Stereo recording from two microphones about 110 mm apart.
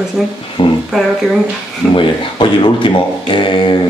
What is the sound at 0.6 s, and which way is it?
Speech, 50° left (ahead or behind).